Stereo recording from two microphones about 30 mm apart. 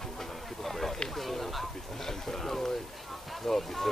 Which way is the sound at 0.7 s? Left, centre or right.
Centre.